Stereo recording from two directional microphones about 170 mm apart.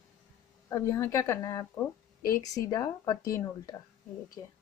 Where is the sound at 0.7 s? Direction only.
20° left (ahead or behind).